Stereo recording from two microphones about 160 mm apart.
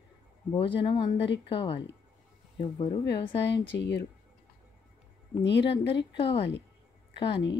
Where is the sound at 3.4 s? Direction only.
90° left.